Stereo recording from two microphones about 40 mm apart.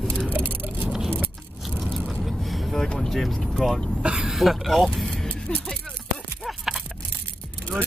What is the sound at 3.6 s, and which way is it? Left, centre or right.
Speech, centre.